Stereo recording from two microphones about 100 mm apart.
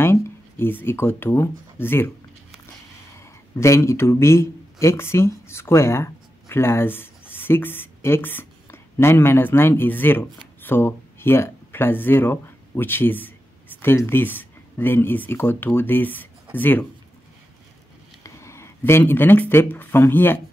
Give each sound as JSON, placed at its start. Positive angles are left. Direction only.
{"t": 0.0, "sound": "speech", "side_deg": 25}
{"t": 3.2, "sound": "speech", "side_deg": 30}
{"t": 18.2, "sound": "speech", "side_deg": 25}